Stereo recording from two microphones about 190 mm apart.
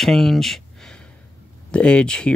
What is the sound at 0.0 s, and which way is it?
Speech, centre (ahead or behind).